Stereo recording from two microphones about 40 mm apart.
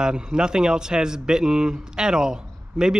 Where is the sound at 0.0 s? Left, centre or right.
Centre.